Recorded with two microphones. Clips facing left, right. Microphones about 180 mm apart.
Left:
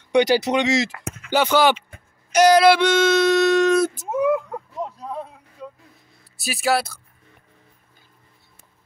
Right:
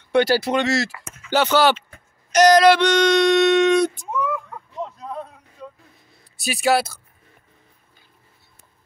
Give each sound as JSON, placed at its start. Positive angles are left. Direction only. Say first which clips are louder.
{"t": 0.1, "sound": "speech", "louder": "left 1 dB", "side_deg": 15}
{"t": 4.1, "sound": "speech", "louder": "left 6 dB", "side_deg": 60}
{"t": 4.7, "sound": "a sound", "louder": "right 1 dB", "side_deg": 5}
{"t": 6.3, "sound": "speech", "louder": "right 2 dB", "side_deg": 0}